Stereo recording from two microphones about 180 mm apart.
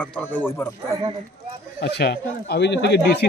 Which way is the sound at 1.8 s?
65° left (ahead or behind).